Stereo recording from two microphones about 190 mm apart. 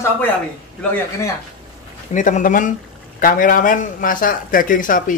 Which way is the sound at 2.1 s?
45° left (ahead or behind).